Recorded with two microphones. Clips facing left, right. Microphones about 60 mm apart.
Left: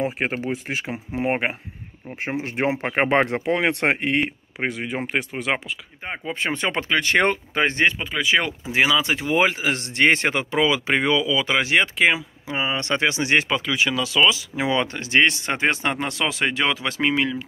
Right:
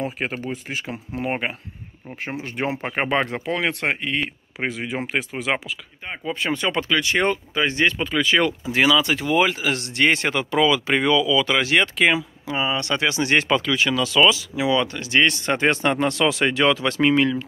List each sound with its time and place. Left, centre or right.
0.2 s speech: left
0.9 s speech: left
3.4 s speech: centre
3.8 s speech: left
4.6 s speech: centre
6.0 s speech: left
8.0 s speech: centre
14.5 s speech: left; by 17.5 s centre